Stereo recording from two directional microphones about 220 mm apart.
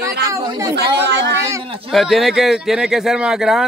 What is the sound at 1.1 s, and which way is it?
Speech, 55° right (ahead or behind).